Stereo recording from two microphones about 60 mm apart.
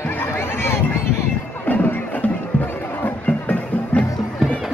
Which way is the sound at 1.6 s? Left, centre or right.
Left.